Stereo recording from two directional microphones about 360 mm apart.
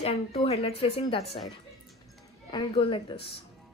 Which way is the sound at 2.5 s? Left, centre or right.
Centre.